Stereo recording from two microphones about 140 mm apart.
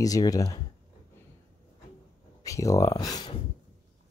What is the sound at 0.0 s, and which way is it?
Speech, 25° left (ahead or behind).